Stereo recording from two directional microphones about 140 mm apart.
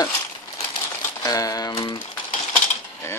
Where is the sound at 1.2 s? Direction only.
25° left (ahead or behind).